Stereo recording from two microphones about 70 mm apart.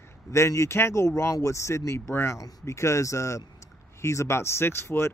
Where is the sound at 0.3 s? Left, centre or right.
Left.